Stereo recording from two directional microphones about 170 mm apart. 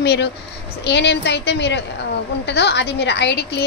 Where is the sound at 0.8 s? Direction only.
85° left.